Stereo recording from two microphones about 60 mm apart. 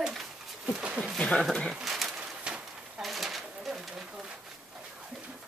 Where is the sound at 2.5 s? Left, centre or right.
Centre.